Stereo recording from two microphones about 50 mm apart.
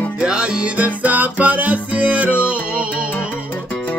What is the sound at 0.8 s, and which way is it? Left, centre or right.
Music, right.